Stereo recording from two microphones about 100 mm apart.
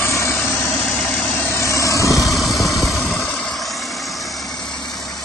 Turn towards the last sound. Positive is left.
turn(degrees=0)  # may be behind; listen again after turning